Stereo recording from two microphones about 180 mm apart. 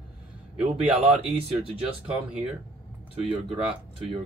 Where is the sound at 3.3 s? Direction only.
35° right (ahead or behind).